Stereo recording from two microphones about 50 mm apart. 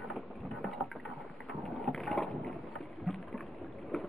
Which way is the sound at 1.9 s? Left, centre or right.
Centre.